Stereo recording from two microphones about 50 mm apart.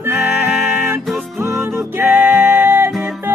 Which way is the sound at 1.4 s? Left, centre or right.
Right.